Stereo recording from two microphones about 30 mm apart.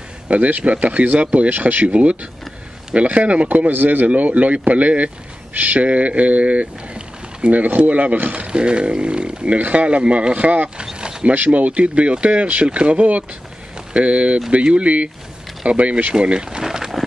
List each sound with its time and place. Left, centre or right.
0.3 s speech: right
1.5 s speech: right
1.9 s speech: right
4.1 s speech: right
5.5 s speech: right
5.8 s speech: right
7.5 s speech: right
8.5 s speech: right
9.6 s speech: right
9.8 s speech: right
11.0 s mechanisms: right
11.3 s speech: right
16.2 s speech: right
16.6 s a sound: right